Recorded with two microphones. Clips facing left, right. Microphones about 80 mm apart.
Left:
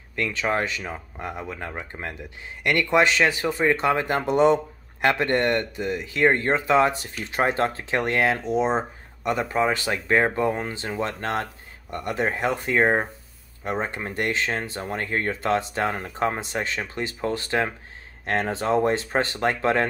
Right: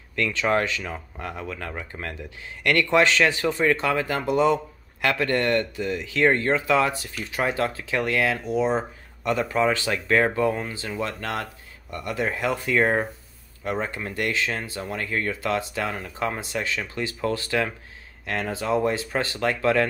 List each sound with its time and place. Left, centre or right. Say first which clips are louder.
0.1 s speech: right 2 dB; centre
3.8 s speech: left 2 dB; left